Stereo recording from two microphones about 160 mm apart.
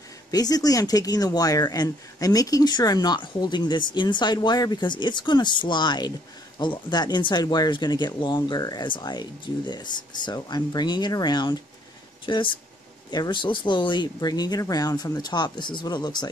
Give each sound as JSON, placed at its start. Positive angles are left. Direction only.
{"t": 0.3, "sound": "speech", "side_deg": 25}